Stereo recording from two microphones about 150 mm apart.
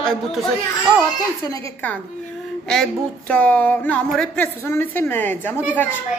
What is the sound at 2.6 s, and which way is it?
A woman's voice, 5° left (ahead or behind).